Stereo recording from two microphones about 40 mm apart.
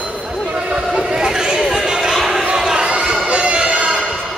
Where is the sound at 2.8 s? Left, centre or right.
Right.